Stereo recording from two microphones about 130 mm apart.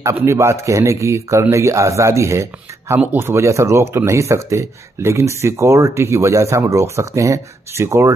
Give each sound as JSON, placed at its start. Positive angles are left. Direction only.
{"t": 0.1, "sound": "speech", "side_deg": -20}